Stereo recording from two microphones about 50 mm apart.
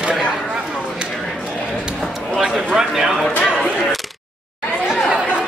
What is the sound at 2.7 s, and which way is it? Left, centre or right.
Speech, centre.